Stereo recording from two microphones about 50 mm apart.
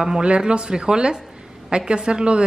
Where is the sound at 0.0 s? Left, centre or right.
Centre.